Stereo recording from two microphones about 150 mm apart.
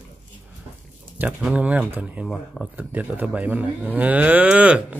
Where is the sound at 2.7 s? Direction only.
10° right (ahead or behind).